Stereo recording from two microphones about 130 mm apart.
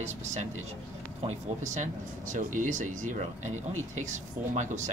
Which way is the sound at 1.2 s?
65° right (ahead or behind).